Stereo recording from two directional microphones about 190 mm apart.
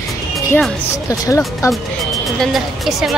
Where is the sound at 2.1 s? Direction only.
Centre (ahead or behind).